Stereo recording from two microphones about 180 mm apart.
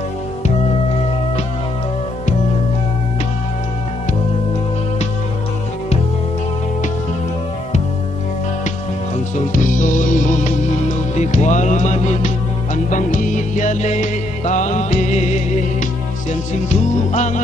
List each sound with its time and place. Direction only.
9.5 s music: 45° left (ahead or behind)